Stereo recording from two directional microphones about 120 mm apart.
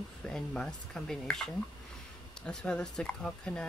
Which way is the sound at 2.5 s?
5° left (ahead or behind).